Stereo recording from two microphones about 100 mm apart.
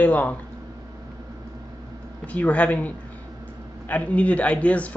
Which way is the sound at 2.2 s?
15° left (ahead or behind).